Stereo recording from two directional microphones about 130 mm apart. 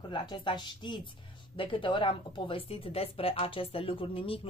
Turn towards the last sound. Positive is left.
turn(degrees=45)  # may be behind; listen again after turning